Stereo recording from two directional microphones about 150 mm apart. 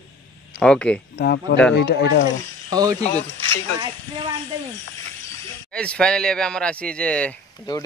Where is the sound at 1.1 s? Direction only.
90° left.